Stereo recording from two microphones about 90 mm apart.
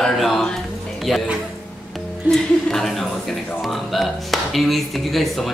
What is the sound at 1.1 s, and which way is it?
Speech, centre (ahead or behind).